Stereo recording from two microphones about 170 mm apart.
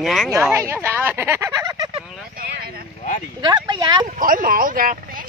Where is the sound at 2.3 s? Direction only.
60° right (ahead or behind).